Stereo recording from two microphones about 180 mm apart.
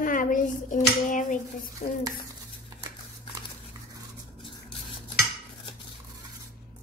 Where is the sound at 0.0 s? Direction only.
50° left (ahead or behind).